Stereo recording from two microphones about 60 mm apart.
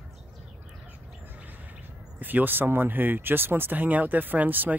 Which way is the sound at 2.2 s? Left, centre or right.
Right.